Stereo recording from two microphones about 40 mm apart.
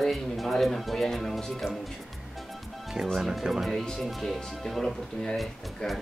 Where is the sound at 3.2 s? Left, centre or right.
Centre.